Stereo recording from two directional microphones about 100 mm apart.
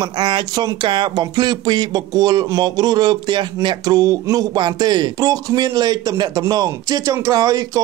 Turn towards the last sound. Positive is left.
turn(degrees=-35)  # may be behind; listen again after turning